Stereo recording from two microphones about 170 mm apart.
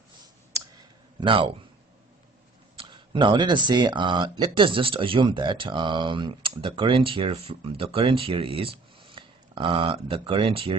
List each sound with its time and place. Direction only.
1.2 s speech: 30° right (ahead or behind)
2.8 s speech: 30° right (ahead or behind)